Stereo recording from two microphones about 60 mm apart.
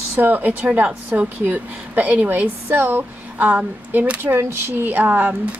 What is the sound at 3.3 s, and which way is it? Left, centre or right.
Speech, right.